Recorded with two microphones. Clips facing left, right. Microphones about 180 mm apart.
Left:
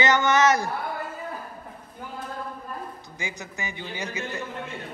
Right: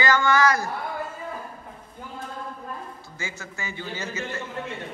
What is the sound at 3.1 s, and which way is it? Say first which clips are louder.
A man's voice: left 1 dB; 15° left (ahead or behind).